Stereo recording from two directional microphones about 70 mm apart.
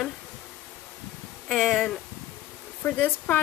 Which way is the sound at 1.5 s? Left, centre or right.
Centre.